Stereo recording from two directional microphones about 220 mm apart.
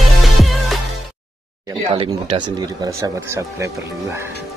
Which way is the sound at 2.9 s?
10° right (ahead or behind).